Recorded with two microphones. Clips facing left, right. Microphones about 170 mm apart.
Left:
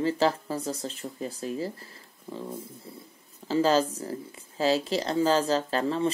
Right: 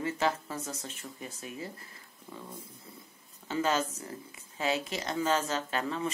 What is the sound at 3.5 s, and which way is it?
Speech, 35° left (ahead or behind).